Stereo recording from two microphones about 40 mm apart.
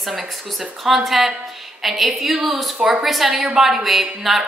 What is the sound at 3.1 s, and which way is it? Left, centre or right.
A woman's voice, centre.